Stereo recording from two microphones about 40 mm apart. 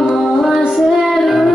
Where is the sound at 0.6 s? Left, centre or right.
Centre.